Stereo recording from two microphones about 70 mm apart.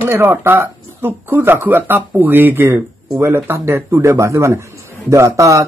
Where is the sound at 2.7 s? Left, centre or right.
Right.